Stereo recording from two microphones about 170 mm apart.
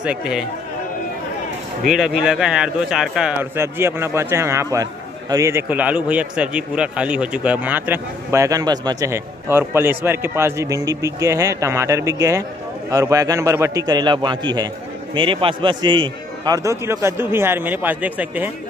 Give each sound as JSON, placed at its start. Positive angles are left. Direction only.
{"t": 0.0, "sound": "speech", "side_deg": -5}
{"t": 1.9, "sound": "a man's voice", "side_deg": -5}